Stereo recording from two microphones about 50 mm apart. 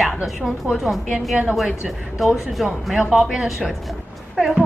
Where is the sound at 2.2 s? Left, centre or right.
Centre.